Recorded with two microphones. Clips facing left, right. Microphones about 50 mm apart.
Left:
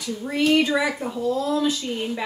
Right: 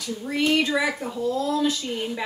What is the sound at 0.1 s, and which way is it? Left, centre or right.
Speech, centre.